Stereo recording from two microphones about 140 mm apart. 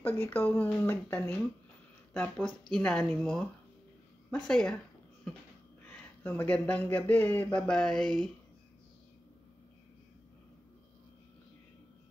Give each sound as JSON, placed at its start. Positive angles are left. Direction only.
{"t": 0.0, "sound": "speech", "side_deg": 15}
{"t": 4.5, "sound": "speech", "side_deg": 5}